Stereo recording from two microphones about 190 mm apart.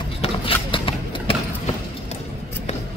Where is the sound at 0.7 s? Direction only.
25° left (ahead or behind).